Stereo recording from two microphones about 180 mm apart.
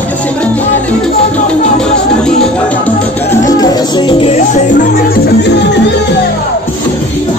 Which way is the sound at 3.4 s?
20° left (ahead or behind).